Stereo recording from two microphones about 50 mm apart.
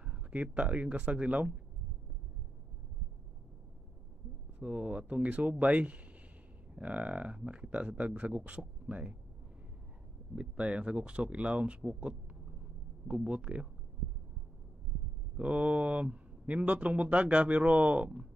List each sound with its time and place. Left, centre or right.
0.0 s speech: right
4.6 s speech: right
10.3 s speech: right
15.3 s speech: right